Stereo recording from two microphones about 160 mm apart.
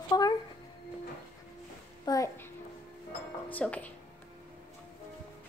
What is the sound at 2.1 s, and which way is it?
Speech, 20° left (ahead or behind).